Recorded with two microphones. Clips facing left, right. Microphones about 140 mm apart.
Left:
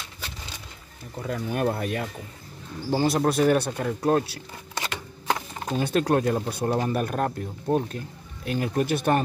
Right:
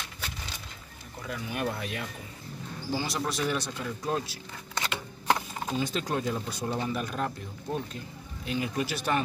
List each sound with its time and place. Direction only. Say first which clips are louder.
1.2 s speech: left 7 dB; 45° left (ahead or behind); by 4.4 s 65° left (ahead or behind)
4.7 s shuffling cards: left 1 dB; 10° left (ahead or behind)
5.8 s speech: left 9 dB; 60° left (ahead or behind)